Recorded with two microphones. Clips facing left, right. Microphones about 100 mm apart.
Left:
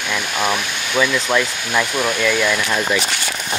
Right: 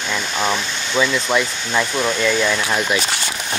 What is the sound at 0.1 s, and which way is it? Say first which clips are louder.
Speech: left 1 dB; 10° left (ahead or behind).